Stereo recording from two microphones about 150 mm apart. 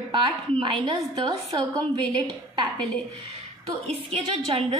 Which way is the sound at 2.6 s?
5° left (ahead or behind).